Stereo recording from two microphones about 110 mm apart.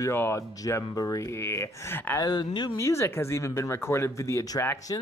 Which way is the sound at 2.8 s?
25° left (ahead or behind).